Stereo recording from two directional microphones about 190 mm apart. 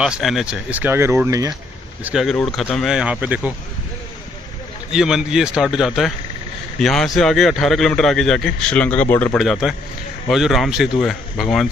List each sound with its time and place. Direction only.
0.0 s speech: centre (ahead or behind)
2.0 s a man's voice: centre (ahead or behind)
4.9 s a man's voice: 5° right (ahead or behind)